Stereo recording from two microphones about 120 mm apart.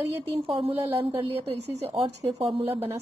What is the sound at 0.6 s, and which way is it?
A woman's voice, 50° right (ahead or behind).